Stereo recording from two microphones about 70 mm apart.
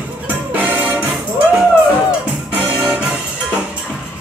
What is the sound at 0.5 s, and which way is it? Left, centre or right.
Music, right.